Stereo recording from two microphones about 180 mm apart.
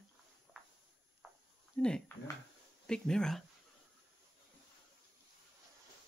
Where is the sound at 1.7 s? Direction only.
5° left (ahead or behind).